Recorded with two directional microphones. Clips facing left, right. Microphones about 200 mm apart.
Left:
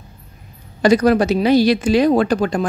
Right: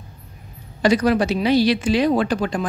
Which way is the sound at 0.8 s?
45° left (ahead or behind).